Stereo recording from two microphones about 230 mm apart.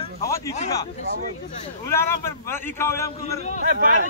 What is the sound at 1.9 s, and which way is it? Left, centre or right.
A man's voice, centre.